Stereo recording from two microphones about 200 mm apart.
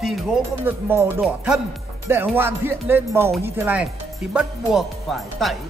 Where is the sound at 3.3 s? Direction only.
10° right (ahead or behind).